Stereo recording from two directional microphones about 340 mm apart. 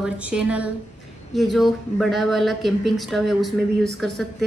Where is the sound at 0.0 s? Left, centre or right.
Centre.